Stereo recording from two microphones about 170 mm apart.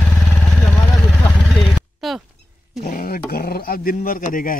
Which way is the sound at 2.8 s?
55° left (ahead or behind).